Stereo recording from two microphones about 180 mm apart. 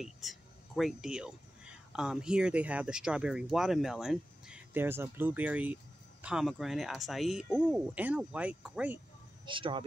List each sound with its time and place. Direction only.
0.0 s speech: centre (ahead or behind)
9.5 s speech: 30° right (ahead or behind)